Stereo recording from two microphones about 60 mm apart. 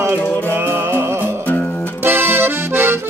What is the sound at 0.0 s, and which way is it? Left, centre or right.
Music, right.